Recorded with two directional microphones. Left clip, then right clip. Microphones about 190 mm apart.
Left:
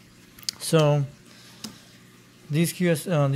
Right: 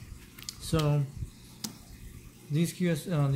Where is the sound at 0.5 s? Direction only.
40° left (ahead or behind).